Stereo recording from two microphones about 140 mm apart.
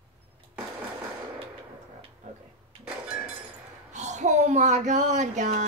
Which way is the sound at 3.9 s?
55° right (ahead or behind).